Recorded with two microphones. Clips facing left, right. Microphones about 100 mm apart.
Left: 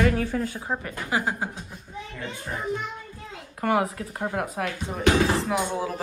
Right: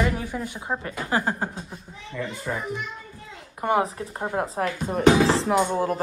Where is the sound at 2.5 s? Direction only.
90° right.